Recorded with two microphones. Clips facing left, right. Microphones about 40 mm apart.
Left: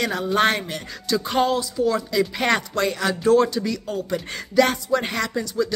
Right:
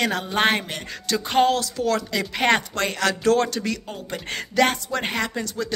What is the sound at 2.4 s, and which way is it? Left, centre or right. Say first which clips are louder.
Speech: right 5 dB; right.